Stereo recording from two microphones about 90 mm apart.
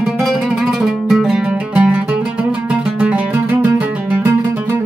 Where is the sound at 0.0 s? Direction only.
Centre (ahead or behind).